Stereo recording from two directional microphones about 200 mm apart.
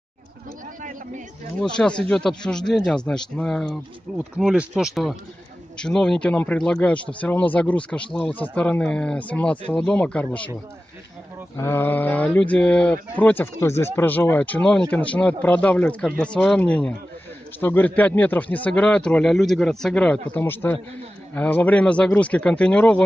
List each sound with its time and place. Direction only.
1.6 s speech: 5° left (ahead or behind)
11.5 s speech: 10° left (ahead or behind)